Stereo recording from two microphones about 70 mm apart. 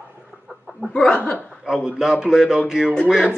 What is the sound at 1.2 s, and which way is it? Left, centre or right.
Chuckle, left.